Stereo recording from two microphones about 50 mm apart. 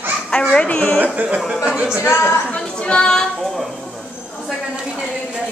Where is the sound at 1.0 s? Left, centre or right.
Right.